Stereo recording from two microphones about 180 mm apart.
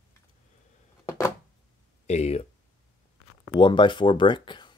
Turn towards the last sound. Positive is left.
turn(degrees=25)  # may be behind; listen again after turning